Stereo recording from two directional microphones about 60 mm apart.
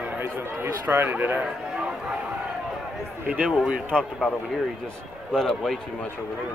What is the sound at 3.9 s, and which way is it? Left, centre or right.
Speech, centre.